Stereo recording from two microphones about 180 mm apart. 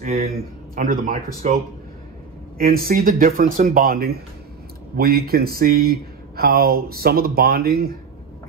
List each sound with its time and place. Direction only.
0.0 s a man's voice: 55° right (ahead or behind)
2.6 s a man's voice: 55° right (ahead or behind)